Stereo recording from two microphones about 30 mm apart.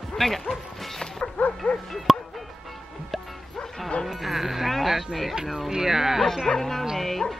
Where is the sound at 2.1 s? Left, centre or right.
Centre.